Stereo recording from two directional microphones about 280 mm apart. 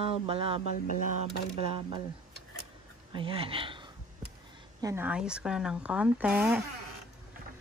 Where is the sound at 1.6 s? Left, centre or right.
Centre.